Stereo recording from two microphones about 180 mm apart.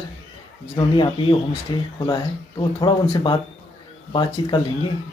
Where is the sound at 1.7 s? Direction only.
25° left (ahead or behind).